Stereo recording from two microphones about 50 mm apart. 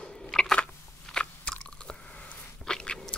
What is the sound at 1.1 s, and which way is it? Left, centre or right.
Biting, centre.